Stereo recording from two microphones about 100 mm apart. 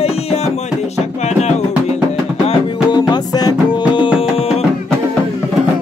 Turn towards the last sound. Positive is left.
turn(degrees=45)  # may be behind; listen again after turning